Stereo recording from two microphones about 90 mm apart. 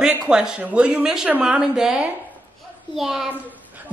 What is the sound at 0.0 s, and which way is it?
A child's voice, 5° right (ahead or behind).